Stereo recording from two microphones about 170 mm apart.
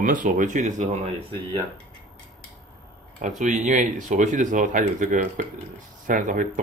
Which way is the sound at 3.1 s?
50° right (ahead or behind).